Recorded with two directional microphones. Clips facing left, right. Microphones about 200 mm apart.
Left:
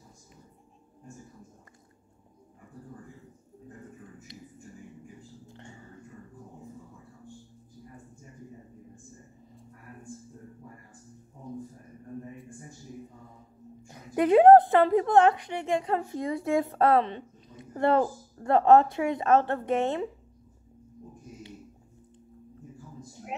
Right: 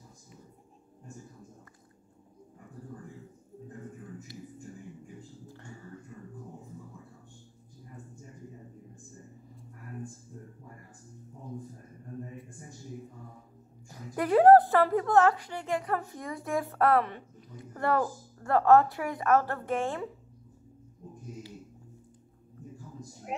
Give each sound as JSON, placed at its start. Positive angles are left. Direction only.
{"t": 5.5, "sound": "music", "side_deg": 20}
{"t": 13.8, "sound": "a woman's voice", "side_deg": 20}